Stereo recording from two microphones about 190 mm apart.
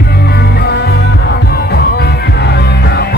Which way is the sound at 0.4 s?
60° left (ahead or behind).